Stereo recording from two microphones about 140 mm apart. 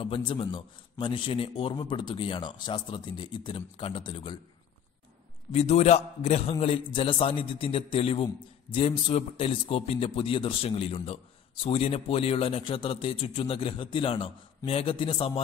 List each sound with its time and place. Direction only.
0.0 s a man's voice: 40° left (ahead or behind)
5.5 s a man's voice: 45° left (ahead or behind)